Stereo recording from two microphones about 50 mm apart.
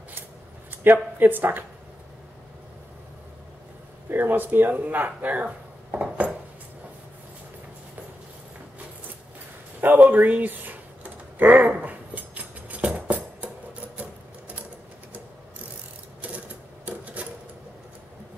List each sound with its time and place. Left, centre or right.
0.7 s speech: right
4.1 s speech: right
5.9 s cutlery: right
9.8 s speech: right
11.3 s dog: right
12.8 s music: right
16.8 s typewriter: right